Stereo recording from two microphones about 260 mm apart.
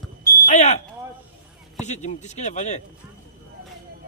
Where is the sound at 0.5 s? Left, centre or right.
Left.